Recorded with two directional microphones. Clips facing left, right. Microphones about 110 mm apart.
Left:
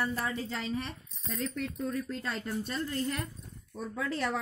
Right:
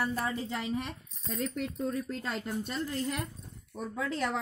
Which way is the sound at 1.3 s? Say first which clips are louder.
Right 1 dB; 25° right (ahead or behind).